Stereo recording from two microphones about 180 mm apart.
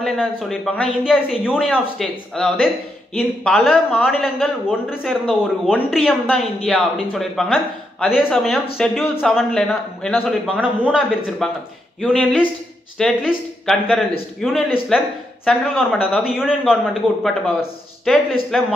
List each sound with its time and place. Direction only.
0.0 s speech: centre (ahead or behind)